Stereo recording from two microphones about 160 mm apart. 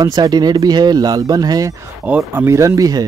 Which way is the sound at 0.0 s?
25° right (ahead or behind).